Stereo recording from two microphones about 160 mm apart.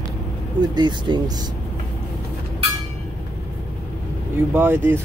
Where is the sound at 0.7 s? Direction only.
30° right (ahead or behind).